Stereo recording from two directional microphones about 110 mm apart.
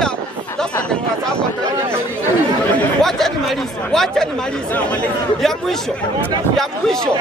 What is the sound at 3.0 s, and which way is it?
Chatter, 5° left (ahead or behind).